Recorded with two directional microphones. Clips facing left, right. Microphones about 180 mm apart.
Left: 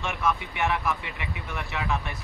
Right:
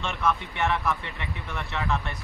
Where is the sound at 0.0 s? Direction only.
15° left (ahead or behind).